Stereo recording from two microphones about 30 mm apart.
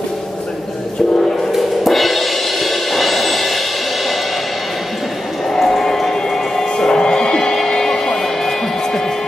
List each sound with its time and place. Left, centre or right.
1.5 s music: centre
5.5 s a sound: centre
5.9 s music: centre
6.9 s music: left